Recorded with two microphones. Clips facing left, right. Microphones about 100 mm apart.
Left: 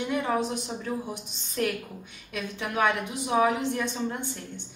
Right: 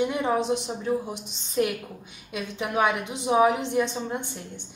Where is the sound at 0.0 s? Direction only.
20° right (ahead or behind).